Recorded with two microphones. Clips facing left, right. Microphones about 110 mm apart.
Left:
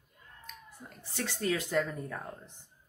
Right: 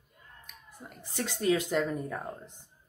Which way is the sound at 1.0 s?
15° right (ahead or behind).